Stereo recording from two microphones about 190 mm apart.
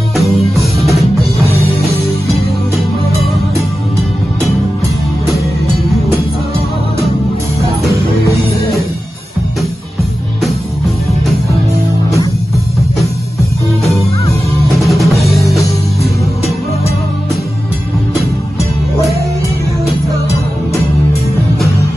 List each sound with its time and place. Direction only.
14.8 s music: centre (ahead or behind)
15.1 s music: 15° left (ahead or behind)